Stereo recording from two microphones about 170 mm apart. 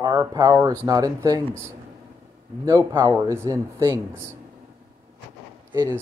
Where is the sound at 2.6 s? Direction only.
25° right (ahead or behind).